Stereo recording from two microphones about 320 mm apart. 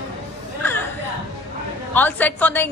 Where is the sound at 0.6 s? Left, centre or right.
Centre.